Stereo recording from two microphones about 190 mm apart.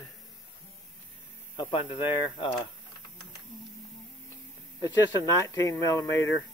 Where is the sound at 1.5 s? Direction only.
25° left (ahead or behind).